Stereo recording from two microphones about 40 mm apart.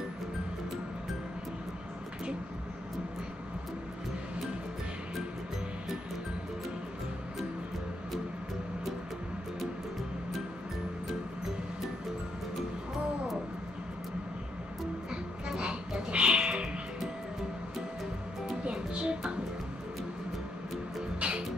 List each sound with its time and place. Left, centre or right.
15.0 s music: right
18.7 s music: right
21.2 s music: right